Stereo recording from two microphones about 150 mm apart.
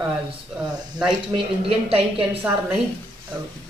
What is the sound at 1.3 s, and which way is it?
Speech, 35° right (ahead or behind).